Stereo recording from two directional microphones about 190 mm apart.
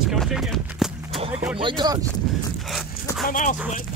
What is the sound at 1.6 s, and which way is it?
Speech, 25° right (ahead or behind).